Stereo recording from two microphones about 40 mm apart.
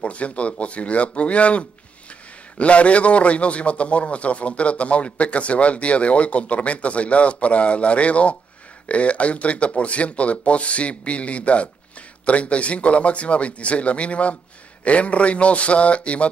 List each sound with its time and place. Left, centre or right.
0.0 s a man's voice: left